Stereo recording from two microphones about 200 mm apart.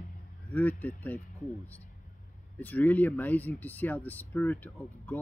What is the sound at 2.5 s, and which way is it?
Speech, 10° left (ahead or behind).